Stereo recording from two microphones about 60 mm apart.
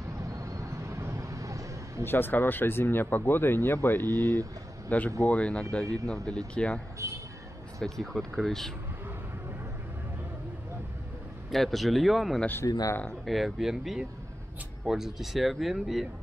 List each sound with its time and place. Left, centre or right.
0.3 s vehicle: right
2.0 s speech: left
4.8 s a man's voice: left
7.0 s speech: right
7.8 s speech: centre
11.5 s speech: centre
12.6 s speech: left
13.2 s speech: centre